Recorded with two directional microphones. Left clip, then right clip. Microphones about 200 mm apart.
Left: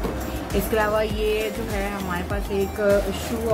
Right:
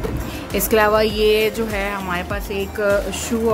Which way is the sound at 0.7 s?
60° right (ahead or behind).